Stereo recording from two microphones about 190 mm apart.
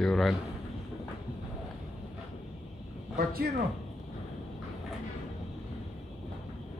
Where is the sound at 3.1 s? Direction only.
55° right (ahead or behind).